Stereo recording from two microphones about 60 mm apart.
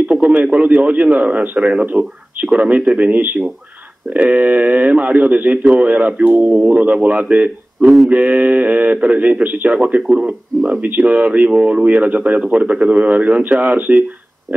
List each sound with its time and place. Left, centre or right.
0.1 s a man's voice: right
10.8 s speech: right